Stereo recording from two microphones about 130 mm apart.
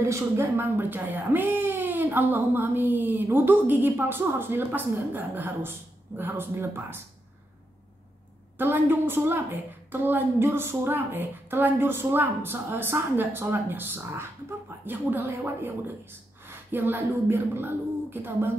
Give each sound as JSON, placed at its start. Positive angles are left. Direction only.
{"t": 0.0, "sound": "speech", "side_deg": -20}
{"t": 8.5, "sound": "speech", "side_deg": -15}